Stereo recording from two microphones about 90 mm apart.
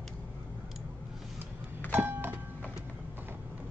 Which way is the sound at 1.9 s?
20° right (ahead or behind).